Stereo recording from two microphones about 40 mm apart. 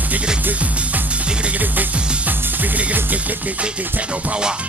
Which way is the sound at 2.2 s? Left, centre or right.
Right.